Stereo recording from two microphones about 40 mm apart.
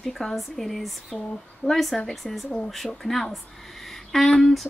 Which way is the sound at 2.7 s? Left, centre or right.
Centre.